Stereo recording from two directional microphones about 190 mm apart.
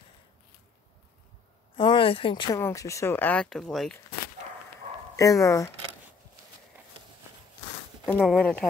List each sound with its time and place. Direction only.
1.8 s speech: 25° left (ahead or behind); by 4.0 s centre (ahead or behind)
5.1 s speech: 15° left (ahead or behind)
8.0 s a sound: 10° left (ahead or behind)
8.3 s speech: 5° left (ahead or behind)